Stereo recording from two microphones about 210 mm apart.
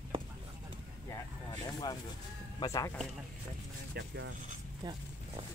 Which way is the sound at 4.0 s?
60° right (ahead or behind).